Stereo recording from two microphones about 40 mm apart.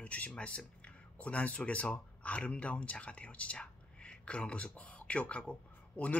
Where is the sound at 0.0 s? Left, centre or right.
Left.